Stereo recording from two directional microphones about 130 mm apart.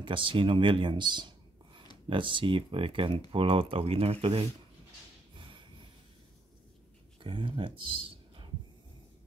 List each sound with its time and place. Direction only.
0.0 s speech: 40° right (ahead or behind)
5.3 s a sound: 40° right (ahead or behind)
7.2 s speech: 40° right (ahead or behind)